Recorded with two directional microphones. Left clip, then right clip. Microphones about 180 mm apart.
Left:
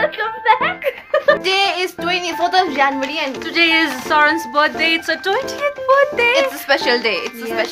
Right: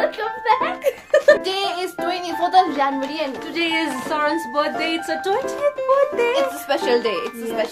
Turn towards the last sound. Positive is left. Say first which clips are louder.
# left 3 dB
turn(degrees=10)  # may be behind; listen again after turning